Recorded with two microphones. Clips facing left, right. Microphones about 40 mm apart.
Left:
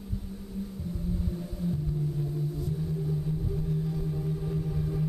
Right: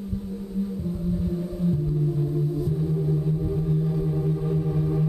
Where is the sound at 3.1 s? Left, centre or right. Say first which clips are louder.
Right 7 dB; right.